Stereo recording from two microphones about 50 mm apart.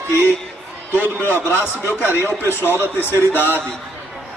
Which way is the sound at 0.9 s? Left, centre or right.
Left.